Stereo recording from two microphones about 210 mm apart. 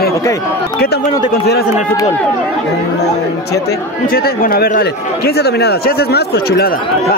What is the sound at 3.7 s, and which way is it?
Speech, 45° left (ahead or behind).